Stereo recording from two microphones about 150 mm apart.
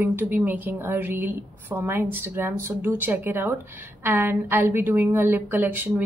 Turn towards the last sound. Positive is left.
turn(degrees=-10)  # may be behind; listen again after turning